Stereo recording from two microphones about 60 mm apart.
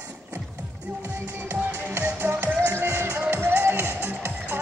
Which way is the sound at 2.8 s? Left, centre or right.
Right.